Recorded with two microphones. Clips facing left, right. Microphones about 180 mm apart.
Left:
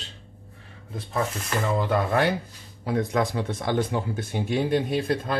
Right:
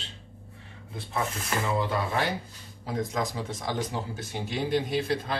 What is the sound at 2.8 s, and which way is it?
Speech, 65° left (ahead or behind).